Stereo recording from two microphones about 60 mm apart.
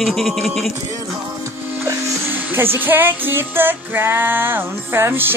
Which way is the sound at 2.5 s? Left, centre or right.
Right.